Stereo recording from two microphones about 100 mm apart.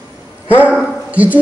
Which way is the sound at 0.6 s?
10° right (ahead or behind).